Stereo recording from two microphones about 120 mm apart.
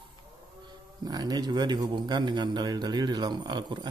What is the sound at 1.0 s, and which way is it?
A man's voice, 35° right (ahead or behind).